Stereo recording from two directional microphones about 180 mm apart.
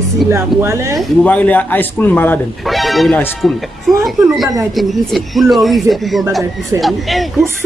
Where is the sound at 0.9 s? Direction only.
10° left (ahead or behind).